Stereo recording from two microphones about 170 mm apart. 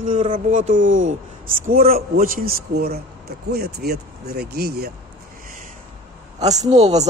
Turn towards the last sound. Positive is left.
turn(degrees=-40)  # may be behind; listen again after turning